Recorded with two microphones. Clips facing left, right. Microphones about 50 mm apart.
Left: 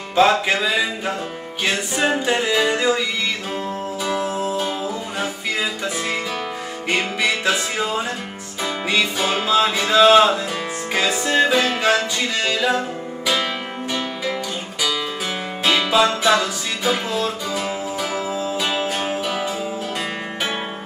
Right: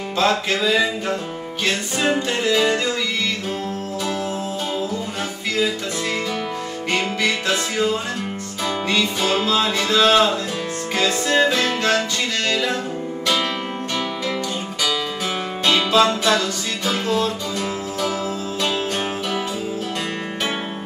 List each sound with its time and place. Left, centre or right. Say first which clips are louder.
0.1 s music: left 4 dB; centre
4.0 s music: left 3 dB; centre
6.9 s music: left 1 dB; centre
15.6 s music: even; centre